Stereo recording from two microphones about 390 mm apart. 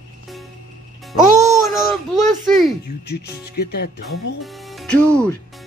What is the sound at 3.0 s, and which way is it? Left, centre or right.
Speech, left.